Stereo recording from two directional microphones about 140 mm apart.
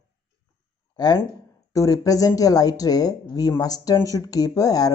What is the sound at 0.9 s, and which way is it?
Speech, 30° left (ahead or behind).